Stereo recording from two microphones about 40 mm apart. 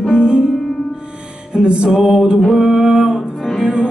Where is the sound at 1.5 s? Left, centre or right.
Right.